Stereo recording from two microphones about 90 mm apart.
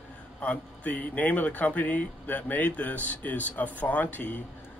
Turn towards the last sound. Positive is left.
turn(degrees=20)  # may be behind; listen again after turning